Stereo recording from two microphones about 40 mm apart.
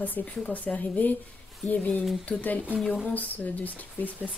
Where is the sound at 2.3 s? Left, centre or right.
Left.